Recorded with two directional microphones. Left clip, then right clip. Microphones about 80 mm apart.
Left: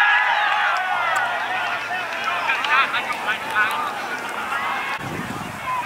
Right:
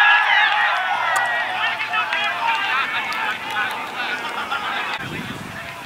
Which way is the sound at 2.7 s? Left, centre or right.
Centre.